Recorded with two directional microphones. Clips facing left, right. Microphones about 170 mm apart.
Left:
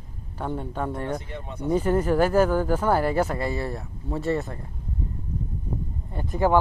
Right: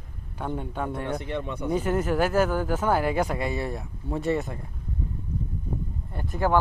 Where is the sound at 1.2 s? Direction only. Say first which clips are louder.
Right 6 dB; 70° right (ahead or behind).